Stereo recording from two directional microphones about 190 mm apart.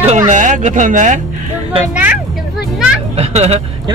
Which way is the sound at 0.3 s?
40° right (ahead or behind).